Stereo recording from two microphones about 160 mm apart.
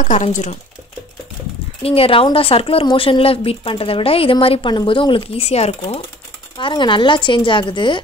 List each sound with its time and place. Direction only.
0.0 s speech: 50° left (ahead or behind)
1.8 s speech: 35° left (ahead or behind)
6.6 s speech: 30° left (ahead or behind)